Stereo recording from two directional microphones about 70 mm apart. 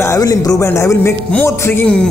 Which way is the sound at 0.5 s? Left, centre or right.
Left.